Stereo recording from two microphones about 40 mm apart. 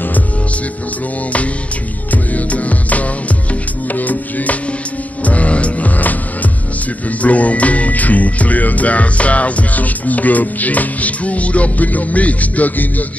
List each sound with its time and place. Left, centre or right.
2.0 s music: left
7.1 s speech: left